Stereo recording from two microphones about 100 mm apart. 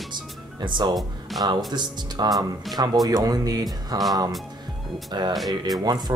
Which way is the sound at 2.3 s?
Centre (ahead or behind).